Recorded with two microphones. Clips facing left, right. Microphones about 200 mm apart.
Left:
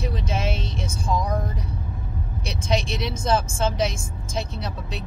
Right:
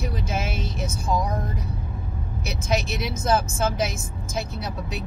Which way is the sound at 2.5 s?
5° right (ahead or behind).